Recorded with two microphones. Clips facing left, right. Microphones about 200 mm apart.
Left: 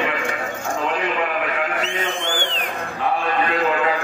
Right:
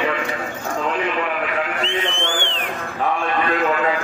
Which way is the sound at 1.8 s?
45° left (ahead or behind).